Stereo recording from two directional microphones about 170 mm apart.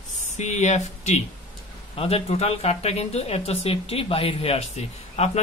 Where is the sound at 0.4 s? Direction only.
45° left (ahead or behind).